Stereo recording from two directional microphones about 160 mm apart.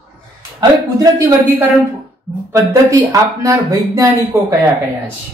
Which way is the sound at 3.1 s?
20° right (ahead or behind).